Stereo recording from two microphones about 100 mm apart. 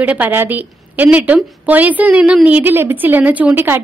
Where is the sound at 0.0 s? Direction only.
15° right (ahead or behind).